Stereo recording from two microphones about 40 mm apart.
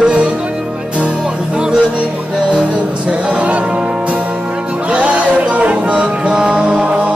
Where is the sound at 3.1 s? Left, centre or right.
Right.